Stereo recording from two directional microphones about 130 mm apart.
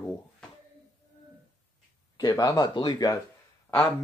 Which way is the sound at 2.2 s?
30° left (ahead or behind).